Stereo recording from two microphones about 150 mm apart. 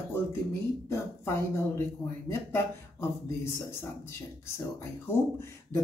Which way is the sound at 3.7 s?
15° left (ahead or behind).